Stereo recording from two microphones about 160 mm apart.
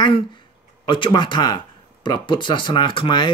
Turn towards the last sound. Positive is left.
turn(degrees=30)  # may be behind; listen again after turning